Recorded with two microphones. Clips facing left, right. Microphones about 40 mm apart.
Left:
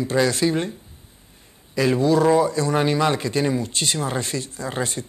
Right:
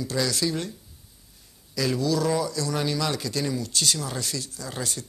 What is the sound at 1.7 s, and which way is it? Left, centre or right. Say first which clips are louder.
Speech: left 7 dB; left.